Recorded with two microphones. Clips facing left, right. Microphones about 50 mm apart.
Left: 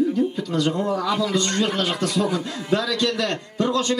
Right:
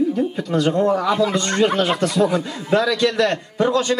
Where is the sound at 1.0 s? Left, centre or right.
Right.